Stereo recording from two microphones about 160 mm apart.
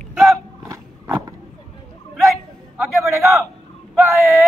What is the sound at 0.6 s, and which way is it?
Biting, 20° right (ahead or behind).